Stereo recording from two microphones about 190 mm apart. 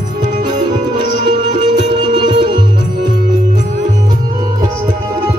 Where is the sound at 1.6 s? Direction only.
25° right (ahead or behind).